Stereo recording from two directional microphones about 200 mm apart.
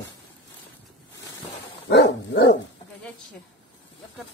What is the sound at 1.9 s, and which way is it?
Dog, 60° left (ahead or behind).